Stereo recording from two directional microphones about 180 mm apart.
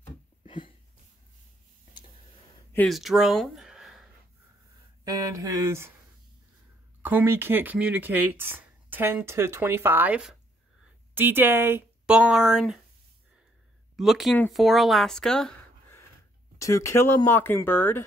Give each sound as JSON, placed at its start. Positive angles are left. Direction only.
{"t": 0.5, "sound": "a sound", "side_deg": 25}
{"t": 2.9, "sound": "speech", "side_deg": 0}
{"t": 5.0, "sound": "speech", "side_deg": -20}
{"t": 7.0, "sound": "speech", "side_deg": -10}
{"t": 13.9, "sound": "a woman's voice", "side_deg": 0}
{"t": 16.5, "sound": "speech", "side_deg": 15}